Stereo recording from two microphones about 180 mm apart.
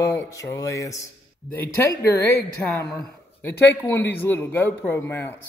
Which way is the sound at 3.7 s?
10° left (ahead or behind).